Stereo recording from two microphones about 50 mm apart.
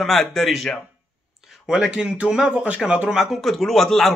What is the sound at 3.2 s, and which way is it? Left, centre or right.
Speech, centre.